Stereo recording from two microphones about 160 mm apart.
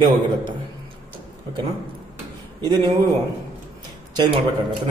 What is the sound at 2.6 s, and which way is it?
Speech, 25° right (ahead or behind).